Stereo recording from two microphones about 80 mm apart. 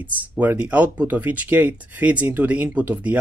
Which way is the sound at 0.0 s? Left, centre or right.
Right.